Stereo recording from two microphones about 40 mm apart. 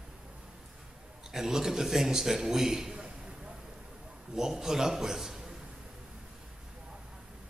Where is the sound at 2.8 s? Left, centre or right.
Right.